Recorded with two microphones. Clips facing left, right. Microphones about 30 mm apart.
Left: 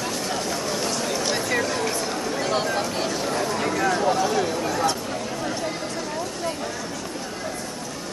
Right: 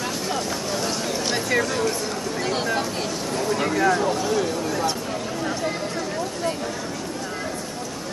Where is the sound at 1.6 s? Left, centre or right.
Centre.